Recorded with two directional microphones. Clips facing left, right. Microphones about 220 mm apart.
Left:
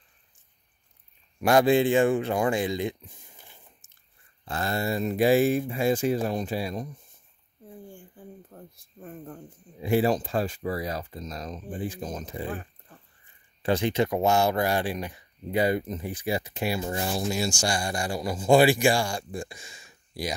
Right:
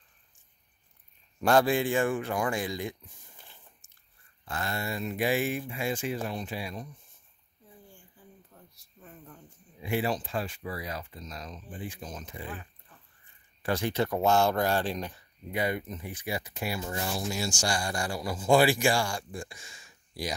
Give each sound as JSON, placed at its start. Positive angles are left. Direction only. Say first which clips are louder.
{"t": 1.4, "sound": "speech", "louder": "left 2 dB", "side_deg": 10}
{"t": 1.7, "sound": "speech", "louder": "left 6 dB", "side_deg": 20}
{"t": 3.3, "sound": "squish", "louder": "left 2 dB", "side_deg": 15}
{"t": 4.5, "sound": "speech", "louder": "left 6 dB", "side_deg": 35}
{"t": 7.6, "sound": "speech", "louder": "left 10 dB", "side_deg": 55}
{"t": 13.6, "sound": "speech", "louder": "left 4 dB", "side_deg": 20}
{"t": 15.5, "sound": "speech", "louder": "left 6 dB", "side_deg": 35}